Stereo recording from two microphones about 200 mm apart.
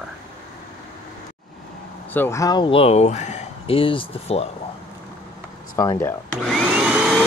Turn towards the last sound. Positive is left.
turn(degrees=0)  # may be behind; listen again after turning